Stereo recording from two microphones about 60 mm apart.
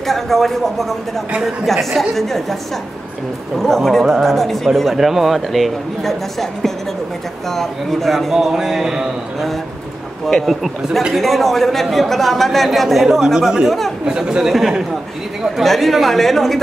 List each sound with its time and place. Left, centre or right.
0.0 s a man's voice: centre
3.5 s a man's voice: centre
7.5 s a man's voice: centre
10.2 s a man's voice: centre
13.7 s a man's voice: centre
14.0 s a man's voice: centre